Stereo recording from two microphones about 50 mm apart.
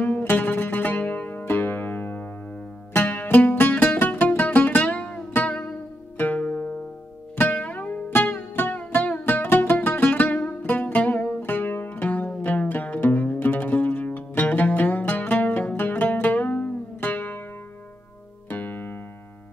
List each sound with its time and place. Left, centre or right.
0.0 s music: left
6.1 s music: left
18.5 s music: left